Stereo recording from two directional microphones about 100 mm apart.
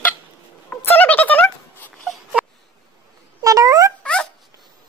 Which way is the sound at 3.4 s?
35° right (ahead or behind).